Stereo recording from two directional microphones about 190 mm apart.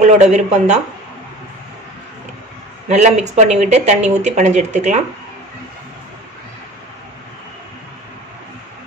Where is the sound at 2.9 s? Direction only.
40° right (ahead or behind).